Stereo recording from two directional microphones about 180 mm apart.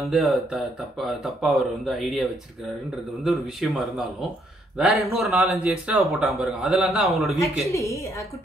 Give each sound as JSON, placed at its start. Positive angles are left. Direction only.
{"t": 0.1, "sound": "speech", "side_deg": 0}
{"t": 7.7, "sound": "a woman's voice", "side_deg": 15}